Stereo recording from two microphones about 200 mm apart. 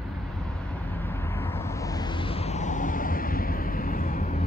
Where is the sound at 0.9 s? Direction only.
10° left (ahead or behind).